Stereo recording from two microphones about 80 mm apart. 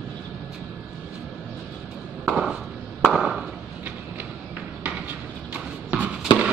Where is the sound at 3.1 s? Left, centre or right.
Centre.